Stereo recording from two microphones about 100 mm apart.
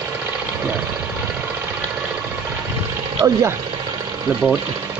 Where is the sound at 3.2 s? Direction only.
30° right (ahead or behind).